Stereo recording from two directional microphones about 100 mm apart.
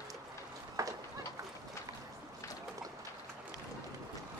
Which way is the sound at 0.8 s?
30° right (ahead or behind).